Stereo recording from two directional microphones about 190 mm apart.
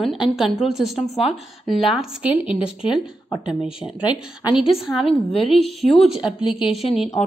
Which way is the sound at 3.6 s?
5° right (ahead or behind).